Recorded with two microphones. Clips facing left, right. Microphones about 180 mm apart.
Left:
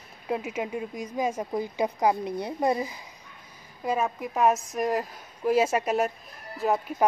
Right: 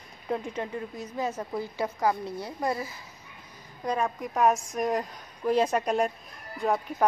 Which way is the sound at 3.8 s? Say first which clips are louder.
Left 1 dB; 5° left (ahead or behind).